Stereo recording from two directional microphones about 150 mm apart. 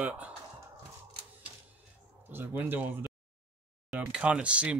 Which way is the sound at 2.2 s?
15° right (ahead or behind).